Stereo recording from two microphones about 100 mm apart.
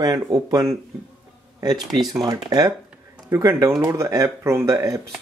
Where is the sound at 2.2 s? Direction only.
40° right (ahead or behind).